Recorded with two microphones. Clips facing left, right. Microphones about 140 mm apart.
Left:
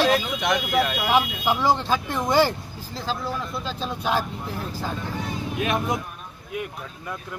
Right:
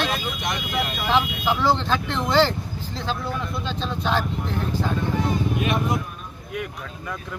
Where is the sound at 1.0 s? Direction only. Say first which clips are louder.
Even; 15° left (ahead or behind).